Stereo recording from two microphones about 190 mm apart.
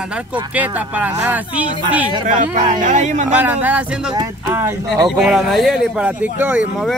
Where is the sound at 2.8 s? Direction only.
40° right (ahead or behind).